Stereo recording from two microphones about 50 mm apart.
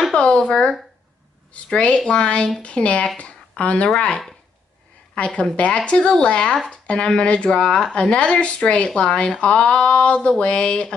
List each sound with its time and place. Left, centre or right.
0.1 s a sound: centre
1.5 s speech: left
5.1 s speech: left